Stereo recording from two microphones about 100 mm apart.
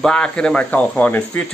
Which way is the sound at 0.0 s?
10° left (ahead or behind).